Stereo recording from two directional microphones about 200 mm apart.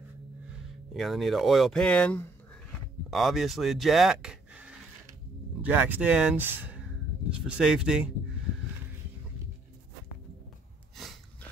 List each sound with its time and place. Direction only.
0.5 s speech: centre (ahead or behind)